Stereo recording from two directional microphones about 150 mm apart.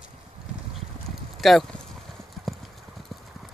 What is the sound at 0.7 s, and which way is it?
Clip-clop, centre (ahead or behind).